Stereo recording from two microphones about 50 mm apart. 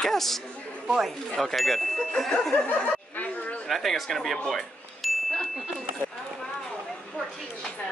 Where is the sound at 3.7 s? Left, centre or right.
Centre.